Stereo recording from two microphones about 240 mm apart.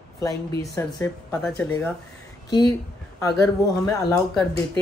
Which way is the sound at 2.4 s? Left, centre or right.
Centre.